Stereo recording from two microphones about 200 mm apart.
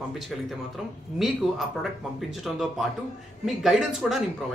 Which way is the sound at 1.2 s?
Centre (ahead or behind).